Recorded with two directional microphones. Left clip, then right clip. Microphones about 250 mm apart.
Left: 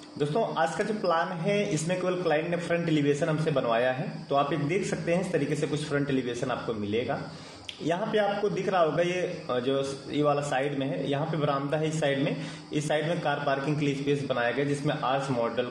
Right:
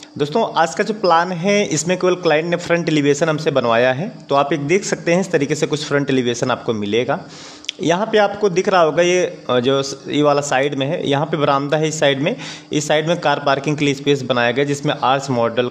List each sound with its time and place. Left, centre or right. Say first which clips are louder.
0.2 s a man's voice: right 10 dB; right